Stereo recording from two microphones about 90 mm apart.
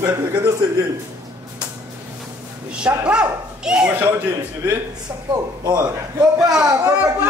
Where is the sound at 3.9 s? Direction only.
25° right (ahead or behind).